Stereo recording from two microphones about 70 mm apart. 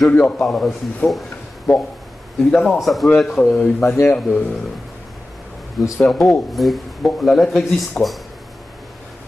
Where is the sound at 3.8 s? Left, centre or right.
Left.